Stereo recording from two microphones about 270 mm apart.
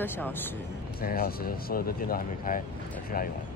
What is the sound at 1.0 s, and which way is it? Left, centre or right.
Speech, left.